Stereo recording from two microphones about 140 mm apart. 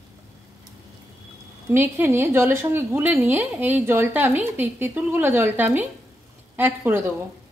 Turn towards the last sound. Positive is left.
turn(degrees=-15)  # may be behind; listen again after turning